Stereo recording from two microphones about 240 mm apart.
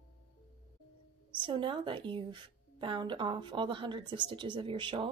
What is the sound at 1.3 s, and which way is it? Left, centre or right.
Speech, centre.